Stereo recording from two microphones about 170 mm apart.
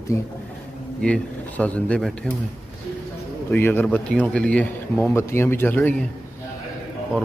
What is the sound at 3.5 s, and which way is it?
A man's voice, 10° left (ahead or behind).